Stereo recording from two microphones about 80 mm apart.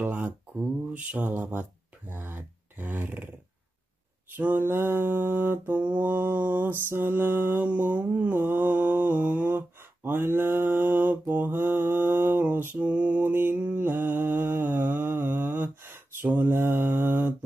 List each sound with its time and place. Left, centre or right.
0.0 s music: right
4.3 s mantra: right
8.3 s mantra: right